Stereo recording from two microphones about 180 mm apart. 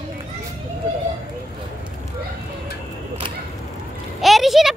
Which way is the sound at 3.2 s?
30° right (ahead or behind).